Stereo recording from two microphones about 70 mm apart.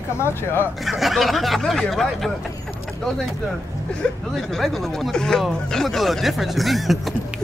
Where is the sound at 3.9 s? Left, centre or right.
Centre.